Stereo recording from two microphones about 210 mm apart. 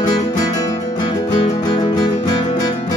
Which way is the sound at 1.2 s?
25° left (ahead or behind).